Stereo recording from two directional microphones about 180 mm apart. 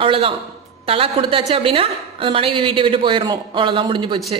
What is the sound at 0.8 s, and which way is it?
A woman's voice, 30° right (ahead or behind).